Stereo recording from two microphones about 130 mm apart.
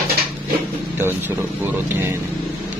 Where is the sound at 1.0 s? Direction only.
15° right (ahead or behind).